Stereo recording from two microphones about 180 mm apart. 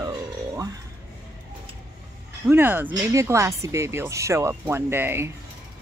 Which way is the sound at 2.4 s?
10° right (ahead or behind).